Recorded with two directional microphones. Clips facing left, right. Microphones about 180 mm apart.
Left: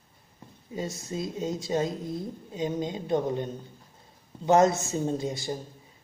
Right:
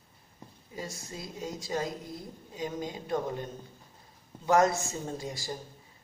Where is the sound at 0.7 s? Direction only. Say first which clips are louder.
Left 8 dB; 20° left (ahead or behind).